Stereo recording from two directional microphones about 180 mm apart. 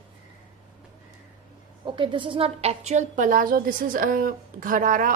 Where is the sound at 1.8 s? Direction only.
25° right (ahead or behind).